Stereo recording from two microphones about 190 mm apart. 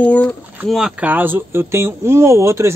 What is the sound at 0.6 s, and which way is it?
Speech, centre (ahead or behind).